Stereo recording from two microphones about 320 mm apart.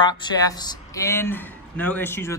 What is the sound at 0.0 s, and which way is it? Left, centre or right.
Speech, centre.